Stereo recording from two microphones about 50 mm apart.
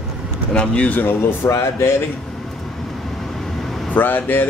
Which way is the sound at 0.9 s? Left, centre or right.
Left.